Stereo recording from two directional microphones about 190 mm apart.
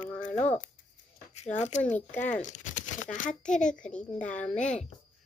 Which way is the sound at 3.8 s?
5° left (ahead or behind).